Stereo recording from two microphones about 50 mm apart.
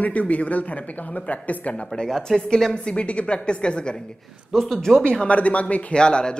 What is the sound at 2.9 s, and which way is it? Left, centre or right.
Speech, left.